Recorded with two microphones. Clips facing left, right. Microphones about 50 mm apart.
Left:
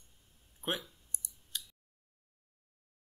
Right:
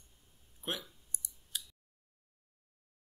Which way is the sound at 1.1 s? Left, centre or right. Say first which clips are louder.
Right 1 dB; left.